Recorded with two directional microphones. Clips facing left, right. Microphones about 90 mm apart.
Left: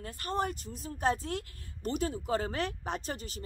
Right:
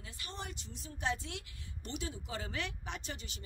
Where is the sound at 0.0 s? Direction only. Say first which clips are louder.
Left 13 dB; 50° left (ahead or behind).